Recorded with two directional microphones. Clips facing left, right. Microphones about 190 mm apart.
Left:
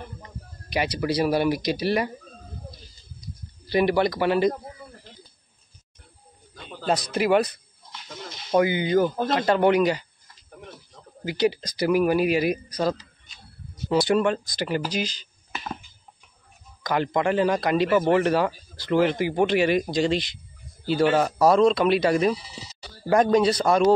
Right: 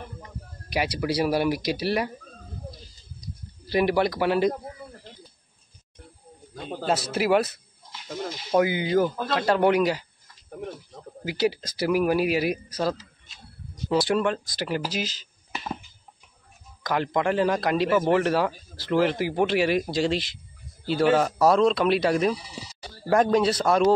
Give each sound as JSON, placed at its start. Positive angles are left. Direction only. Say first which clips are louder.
{"t": 0.7, "sound": "speech", "louder": "left 1 dB", "side_deg": -10}
{"t": 3.6, "sound": "speech", "louder": "left 1 dB", "side_deg": -5}
{"t": 6.5, "sound": "a sound", "louder": "right 7 dB", "side_deg": -45}
{"t": 6.9, "sound": "speech", "louder": "left 1 dB", "side_deg": -5}
{"t": 11.2, "sound": "speech", "louder": "left 2 dB", "side_deg": -5}
{"t": 16.8, "sound": "speech", "louder": "left 1 dB", "side_deg": 0}